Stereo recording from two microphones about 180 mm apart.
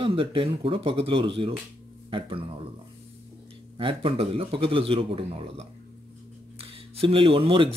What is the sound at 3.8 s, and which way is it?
A man's voice, 30° right (ahead or behind).